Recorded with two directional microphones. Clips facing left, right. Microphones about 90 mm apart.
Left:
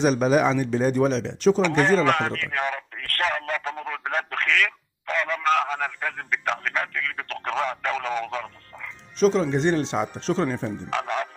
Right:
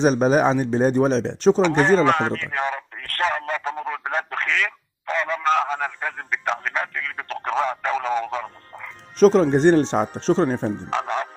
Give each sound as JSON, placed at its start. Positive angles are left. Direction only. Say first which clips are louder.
{"t": 0.0, "sound": "speech", "louder": "right 2 dB", "side_deg": -35}
{"t": 9.2, "sound": "speech", "louder": "right 6 dB", "side_deg": -45}